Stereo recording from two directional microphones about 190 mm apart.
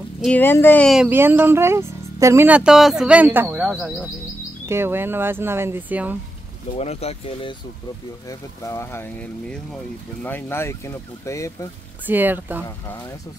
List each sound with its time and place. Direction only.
0.2 s speech: 10° left (ahead or behind)
1.0 s speech: 10° right (ahead or behind)
6.8 s speech: 35° left (ahead or behind)
8.3 s speech: 15° left (ahead or behind)
12.1 s speech: 10° right (ahead or behind)